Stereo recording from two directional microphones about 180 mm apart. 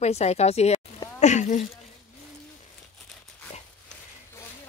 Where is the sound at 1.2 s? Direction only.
40° left (ahead or behind).